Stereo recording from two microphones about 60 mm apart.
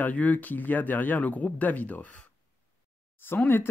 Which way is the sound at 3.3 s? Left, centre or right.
Left.